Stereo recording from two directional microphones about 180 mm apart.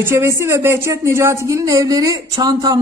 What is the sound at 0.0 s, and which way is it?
Speech, 15° right (ahead or behind).